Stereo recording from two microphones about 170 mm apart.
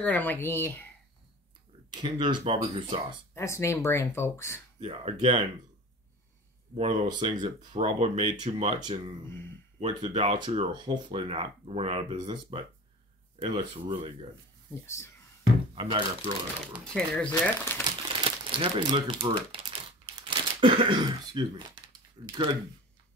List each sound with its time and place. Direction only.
0.0 s speech: 10° left (ahead or behind)
1.9 s speech: 25° right (ahead or behind)
3.3 s speech: 15° left (ahead or behind)
4.7 s speech: 35° right (ahead or behind)
6.7 s speech: 30° right (ahead or behind)
8.7 s speech: 25° right (ahead or behind)
9.2 s speech: 15° left (ahead or behind)
10.0 s speech: 30° right (ahead or behind)
14.7 s speech: 15° left (ahead or behind)
15.7 s speech: 30° right (ahead or behind)
16.8 s speech: 5° left (ahead or behind)
17.8 s crumpling: 30° right (ahead or behind)
20.2 s speech: 30° right (ahead or behind)